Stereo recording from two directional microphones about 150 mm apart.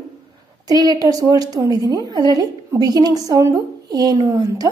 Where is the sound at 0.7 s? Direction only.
25° right (ahead or behind).